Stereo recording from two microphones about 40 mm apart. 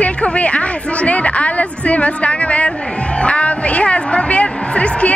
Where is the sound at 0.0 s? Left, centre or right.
Left.